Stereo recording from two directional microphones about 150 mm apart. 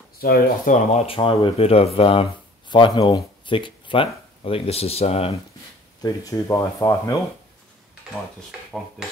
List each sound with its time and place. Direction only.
0.2 s speech: 90° left
0.9 s speech: 40° left (ahead or behind)
6.0 s speech: 20° left (ahead or behind)